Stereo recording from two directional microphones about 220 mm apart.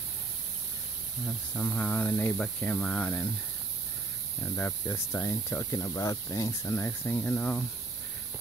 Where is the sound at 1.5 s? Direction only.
5° left (ahead or behind).